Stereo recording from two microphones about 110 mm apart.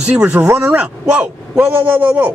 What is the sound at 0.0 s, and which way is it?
Speech, 10° right (ahead or behind).